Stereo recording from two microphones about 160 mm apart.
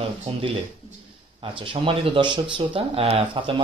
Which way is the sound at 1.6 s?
35° right (ahead or behind).